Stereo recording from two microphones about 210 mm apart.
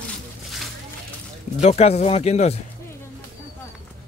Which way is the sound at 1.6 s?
30° left (ahead or behind).